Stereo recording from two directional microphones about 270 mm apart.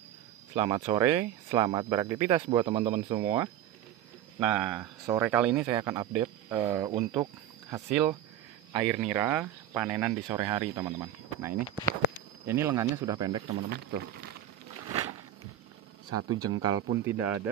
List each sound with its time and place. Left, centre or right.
0.6 s speech: centre
13.7 s speech: right
16.1 s speech: centre